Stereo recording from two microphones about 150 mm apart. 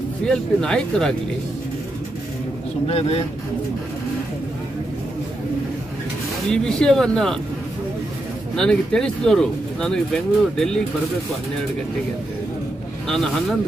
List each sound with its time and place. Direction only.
0.2 s speech: 5° left (ahead or behind)
2.9 s speech: 40° left (ahead or behind)
6.5 s speech: 5° left (ahead or behind)
8.5 s speech: 5° left (ahead or behind)
13.1 s speech: 5° left (ahead or behind)